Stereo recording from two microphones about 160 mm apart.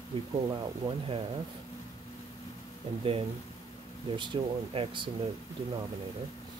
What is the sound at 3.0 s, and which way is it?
Speech, 35° right (ahead or behind).